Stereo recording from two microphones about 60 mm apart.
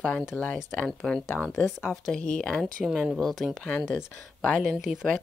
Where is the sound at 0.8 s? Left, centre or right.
Centre.